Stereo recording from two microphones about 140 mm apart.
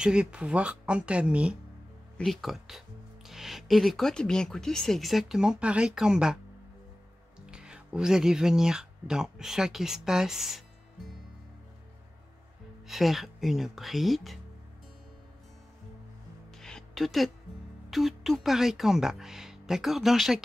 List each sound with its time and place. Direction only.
0.0 s speech: 5° right (ahead or behind)
7.4 s speech: 5° right (ahead or behind)
12.8 s speech: centre (ahead or behind)
16.5 s music: 5° left (ahead or behind)
17.8 s speech: centre (ahead or behind)